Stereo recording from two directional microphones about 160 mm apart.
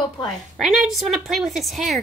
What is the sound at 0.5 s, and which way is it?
Speech, centre (ahead or behind).